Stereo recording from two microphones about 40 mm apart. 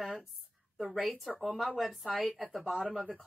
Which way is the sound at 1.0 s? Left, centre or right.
Centre.